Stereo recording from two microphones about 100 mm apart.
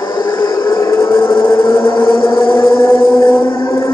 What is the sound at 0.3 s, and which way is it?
Vehicle, 55° left (ahead or behind).